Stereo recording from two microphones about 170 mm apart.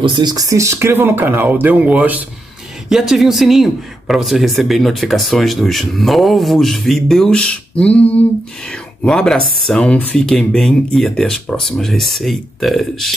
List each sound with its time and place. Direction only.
0.0 s speech: 25° right (ahead or behind); by 9.4 s 5° left (ahead or behind)
9.4 s speech: 60° right (ahead or behind)
9.7 s speech: 5° left (ahead or behind)